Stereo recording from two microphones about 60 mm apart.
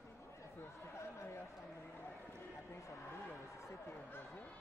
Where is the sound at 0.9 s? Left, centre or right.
Left.